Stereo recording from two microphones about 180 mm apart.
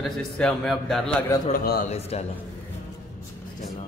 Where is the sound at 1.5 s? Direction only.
55° left (ahead or behind).